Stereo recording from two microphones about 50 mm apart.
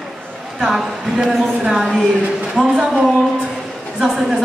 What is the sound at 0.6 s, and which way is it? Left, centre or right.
A woman's voice, centre.